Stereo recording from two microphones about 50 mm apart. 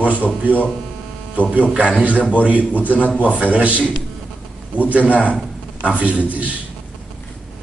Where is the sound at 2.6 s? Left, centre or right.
Left.